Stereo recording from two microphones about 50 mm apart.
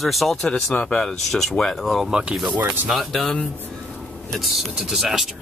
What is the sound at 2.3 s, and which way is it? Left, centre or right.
Speech, centre.